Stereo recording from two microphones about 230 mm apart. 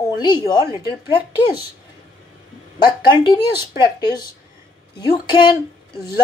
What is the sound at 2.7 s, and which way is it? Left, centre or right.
Speech, centre.